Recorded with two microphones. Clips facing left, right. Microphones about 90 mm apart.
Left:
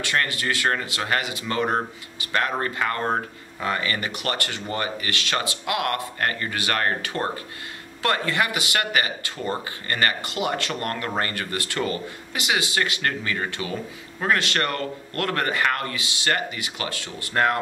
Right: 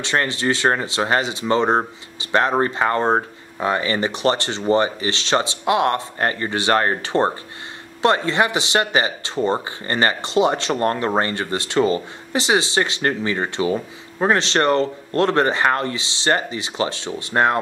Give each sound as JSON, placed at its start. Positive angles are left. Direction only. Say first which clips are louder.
{"t": 0.0, "sound": "speech", "louder": "right 4 dB", "side_deg": -25}